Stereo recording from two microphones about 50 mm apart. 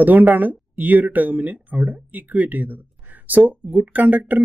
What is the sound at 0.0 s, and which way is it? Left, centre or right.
Speech, right.